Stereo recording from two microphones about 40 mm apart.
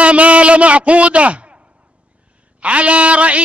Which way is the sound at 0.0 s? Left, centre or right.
Right.